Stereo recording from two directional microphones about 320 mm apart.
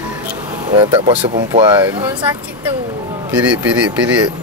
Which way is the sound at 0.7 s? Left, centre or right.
Centre.